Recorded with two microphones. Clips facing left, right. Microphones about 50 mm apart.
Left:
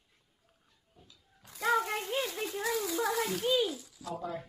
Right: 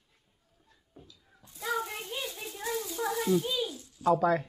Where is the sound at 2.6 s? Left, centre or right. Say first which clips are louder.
Even; left.